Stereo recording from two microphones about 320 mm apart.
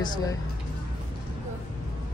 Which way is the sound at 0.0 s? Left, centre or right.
Centre.